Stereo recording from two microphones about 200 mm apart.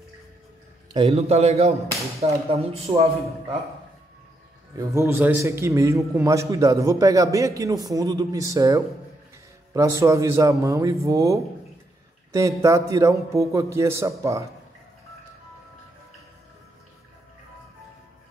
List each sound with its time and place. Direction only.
0.9 s speech: 30° right (ahead or behind)
4.7 s a man's voice: 15° right (ahead or behind)